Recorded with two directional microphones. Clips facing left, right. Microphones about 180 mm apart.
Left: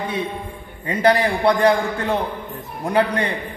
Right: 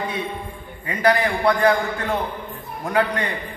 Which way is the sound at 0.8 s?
30° left (ahead or behind).